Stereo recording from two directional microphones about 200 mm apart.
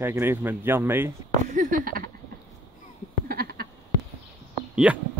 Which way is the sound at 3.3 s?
50° right (ahead or behind).